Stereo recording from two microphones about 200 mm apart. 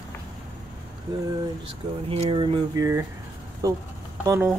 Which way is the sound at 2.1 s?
25° right (ahead or behind).